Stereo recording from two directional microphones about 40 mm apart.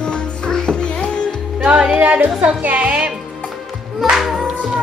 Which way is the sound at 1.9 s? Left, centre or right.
Right.